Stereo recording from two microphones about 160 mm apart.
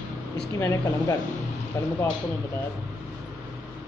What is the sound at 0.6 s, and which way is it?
A man's voice, 25° left (ahead or behind).